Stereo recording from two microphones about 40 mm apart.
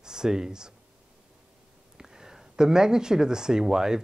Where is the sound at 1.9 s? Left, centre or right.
Centre.